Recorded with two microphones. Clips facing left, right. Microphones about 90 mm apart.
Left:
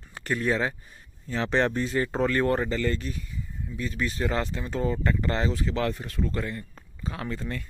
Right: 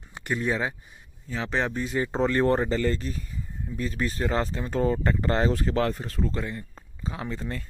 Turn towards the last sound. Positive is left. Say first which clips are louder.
# even
turn(degrees=-20)  # may be behind; listen again after turning